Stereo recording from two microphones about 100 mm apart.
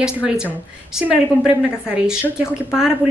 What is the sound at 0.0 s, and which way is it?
Speech, 10° right (ahead or behind).